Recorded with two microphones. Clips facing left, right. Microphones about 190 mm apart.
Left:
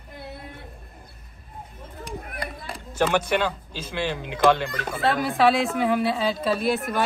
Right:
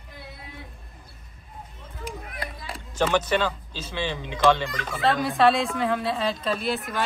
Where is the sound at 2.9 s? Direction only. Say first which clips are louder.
Left 1 dB; 10° left (ahead or behind).